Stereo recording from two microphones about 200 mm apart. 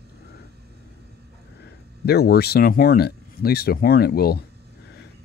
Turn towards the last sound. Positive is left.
turn(degrees=50)  # may be behind; listen again after turning